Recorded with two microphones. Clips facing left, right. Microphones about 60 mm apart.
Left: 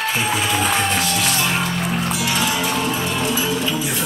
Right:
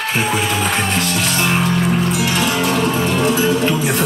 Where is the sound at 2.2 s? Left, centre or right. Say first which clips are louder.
Right 3 dB; right.